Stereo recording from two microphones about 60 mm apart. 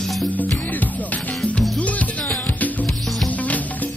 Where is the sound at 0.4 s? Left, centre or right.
Left.